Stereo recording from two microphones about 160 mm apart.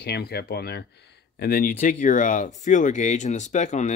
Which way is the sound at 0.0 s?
85° left.